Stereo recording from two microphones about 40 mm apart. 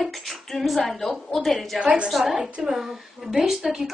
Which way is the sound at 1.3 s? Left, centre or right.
Centre.